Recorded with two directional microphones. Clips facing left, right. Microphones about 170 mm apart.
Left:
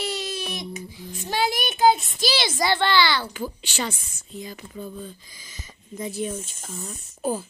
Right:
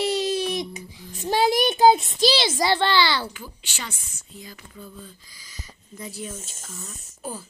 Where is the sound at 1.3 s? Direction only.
30° right (ahead or behind).